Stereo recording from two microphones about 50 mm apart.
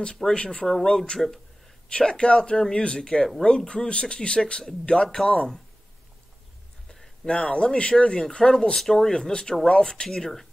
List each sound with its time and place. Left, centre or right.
0.2 s speech: centre
0.7 s speech: centre
1.9 s speech: centre
6.9 s speech: centre